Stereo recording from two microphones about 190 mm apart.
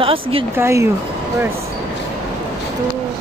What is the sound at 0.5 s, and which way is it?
Speech, 15° right (ahead or behind).